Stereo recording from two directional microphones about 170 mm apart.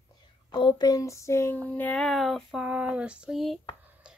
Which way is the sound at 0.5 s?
25° left (ahead or behind).